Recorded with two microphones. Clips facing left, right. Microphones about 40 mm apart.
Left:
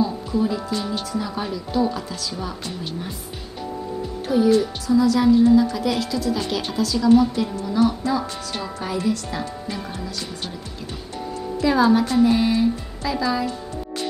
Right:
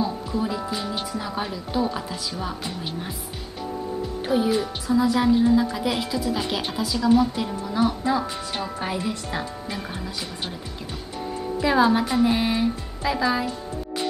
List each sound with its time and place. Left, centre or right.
0.0 s a woman's voice: centre
4.3 s a woman's voice: right
11.6 s a woman's voice: centre